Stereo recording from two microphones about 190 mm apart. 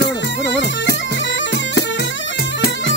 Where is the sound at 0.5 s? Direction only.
70° left (ahead or behind).